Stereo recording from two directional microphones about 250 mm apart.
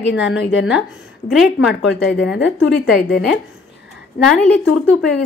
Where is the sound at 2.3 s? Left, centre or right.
Left.